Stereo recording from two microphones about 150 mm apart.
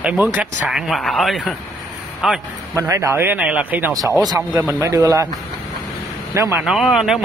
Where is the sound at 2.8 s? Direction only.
20° right (ahead or behind).